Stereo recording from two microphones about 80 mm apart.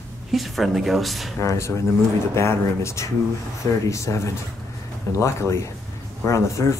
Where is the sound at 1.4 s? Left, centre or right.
Left.